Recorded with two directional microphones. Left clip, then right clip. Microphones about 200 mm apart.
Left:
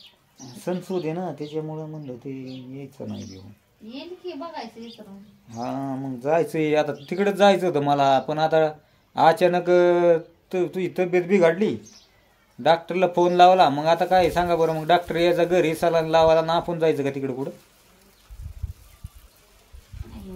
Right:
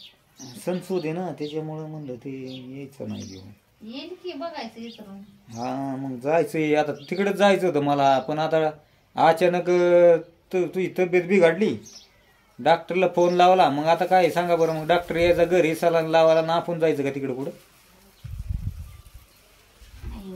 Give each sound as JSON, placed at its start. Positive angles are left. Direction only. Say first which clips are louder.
{"t": 0.6, "sound": "speech", "louder": "even", "side_deg": 15}
{"t": 5.5, "sound": "speech", "louder": "even", "side_deg": 20}